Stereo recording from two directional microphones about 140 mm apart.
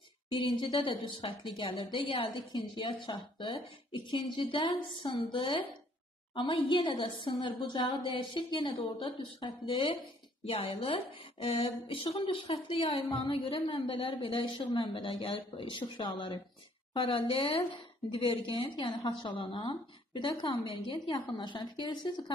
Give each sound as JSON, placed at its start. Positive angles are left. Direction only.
{"t": 0.4, "sound": "a woman's voice", "side_deg": 35}